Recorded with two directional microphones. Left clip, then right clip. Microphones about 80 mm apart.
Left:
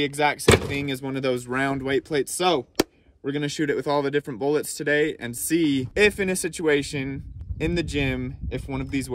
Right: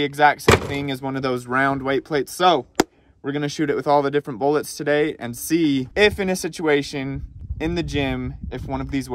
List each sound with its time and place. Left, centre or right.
0.0 s speech: centre